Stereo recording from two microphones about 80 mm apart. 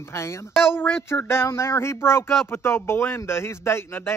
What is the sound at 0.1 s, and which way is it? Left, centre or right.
Speech, left.